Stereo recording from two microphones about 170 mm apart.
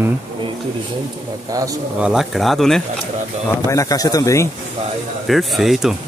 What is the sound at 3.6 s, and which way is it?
Speech, 20° left (ahead or behind).